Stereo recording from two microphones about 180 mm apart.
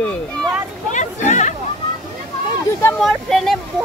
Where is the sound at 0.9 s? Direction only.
40° left (ahead or behind).